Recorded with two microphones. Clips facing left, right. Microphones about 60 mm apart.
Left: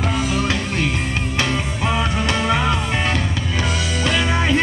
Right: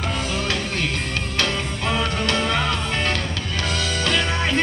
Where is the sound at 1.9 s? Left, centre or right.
Centre.